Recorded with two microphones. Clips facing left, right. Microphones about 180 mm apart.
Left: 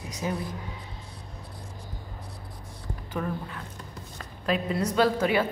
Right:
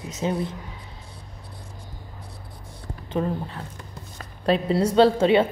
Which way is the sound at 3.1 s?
30° right (ahead or behind).